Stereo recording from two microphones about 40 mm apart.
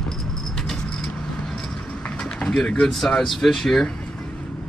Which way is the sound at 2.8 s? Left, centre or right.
Centre.